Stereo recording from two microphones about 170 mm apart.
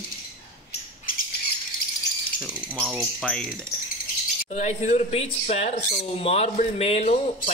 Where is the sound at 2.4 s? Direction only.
Centre (ahead or behind).